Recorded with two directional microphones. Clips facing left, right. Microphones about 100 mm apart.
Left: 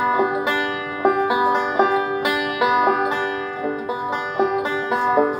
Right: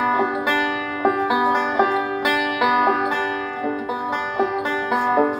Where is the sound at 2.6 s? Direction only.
20° left (ahead or behind).